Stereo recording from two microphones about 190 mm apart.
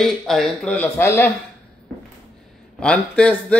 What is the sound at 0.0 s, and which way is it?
Speech, centre (ahead or behind).